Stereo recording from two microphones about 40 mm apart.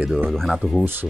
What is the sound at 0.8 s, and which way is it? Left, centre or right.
Speech, right.